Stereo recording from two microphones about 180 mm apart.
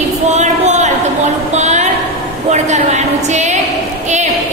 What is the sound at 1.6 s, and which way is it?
Music, 40° right (ahead or behind).